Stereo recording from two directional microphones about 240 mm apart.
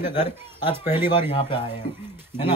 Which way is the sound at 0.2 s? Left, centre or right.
Centre.